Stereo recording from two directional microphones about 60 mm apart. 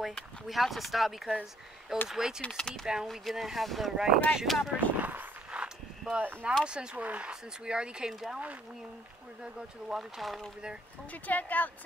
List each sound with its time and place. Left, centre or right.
0.5 s speech: centre
2.5 s speech: centre
2.9 s speech: centre
3.9 s speech: centre
4.9 s a sound: right
5.5 s a sound: centre
6.1 s speech: right
8.1 s speech: centre
9.4 s speech: centre
11.1 s speech: left